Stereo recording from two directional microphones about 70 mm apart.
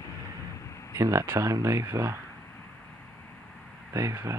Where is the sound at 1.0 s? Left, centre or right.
Right.